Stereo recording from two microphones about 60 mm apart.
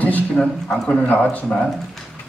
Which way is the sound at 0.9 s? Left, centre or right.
Left.